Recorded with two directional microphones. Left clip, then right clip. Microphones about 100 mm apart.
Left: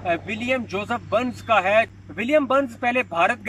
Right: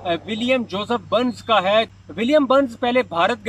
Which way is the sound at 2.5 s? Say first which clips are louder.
Right 3 dB; 45° right (ahead or behind).